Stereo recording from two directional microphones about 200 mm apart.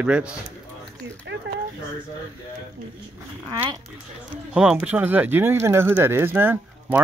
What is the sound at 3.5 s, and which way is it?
Speech, 20° right (ahead or behind).